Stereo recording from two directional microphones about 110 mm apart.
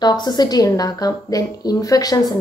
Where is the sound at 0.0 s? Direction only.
40° left (ahead or behind).